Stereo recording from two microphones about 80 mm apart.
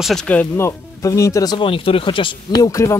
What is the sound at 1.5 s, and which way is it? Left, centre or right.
Speech, left.